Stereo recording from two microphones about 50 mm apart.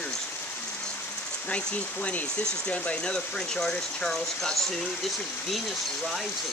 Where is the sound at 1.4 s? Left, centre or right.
Left.